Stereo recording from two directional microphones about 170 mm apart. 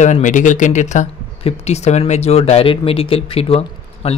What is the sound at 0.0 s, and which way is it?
Speech, 45° left (ahead or behind).